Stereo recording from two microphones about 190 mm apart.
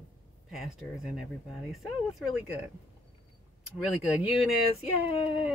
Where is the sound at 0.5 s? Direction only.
Centre (ahead or behind).